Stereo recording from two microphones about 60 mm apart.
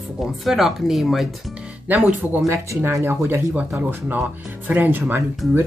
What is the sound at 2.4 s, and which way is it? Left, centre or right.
Speech, right.